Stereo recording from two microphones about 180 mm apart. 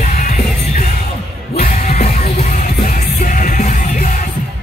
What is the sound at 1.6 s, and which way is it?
Music, 50° left (ahead or behind).